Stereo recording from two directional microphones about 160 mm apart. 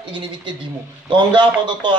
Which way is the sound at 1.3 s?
30° right (ahead or behind).